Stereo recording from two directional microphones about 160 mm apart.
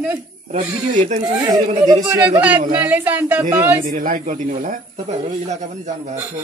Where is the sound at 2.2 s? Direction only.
10° right (ahead or behind).